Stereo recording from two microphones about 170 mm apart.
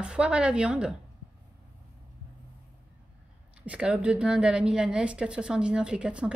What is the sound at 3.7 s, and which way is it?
A woman's voice, 5° right (ahead or behind).